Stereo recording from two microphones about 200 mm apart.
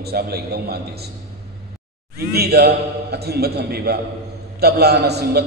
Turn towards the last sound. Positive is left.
turn(degrees=-55)  # may be behind; listen again after turning